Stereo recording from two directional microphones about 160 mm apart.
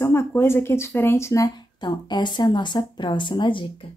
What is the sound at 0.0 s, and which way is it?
Speech, 15° left (ahead or behind).